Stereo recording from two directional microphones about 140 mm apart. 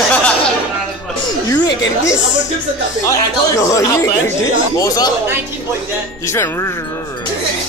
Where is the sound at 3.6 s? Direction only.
25° left (ahead or behind).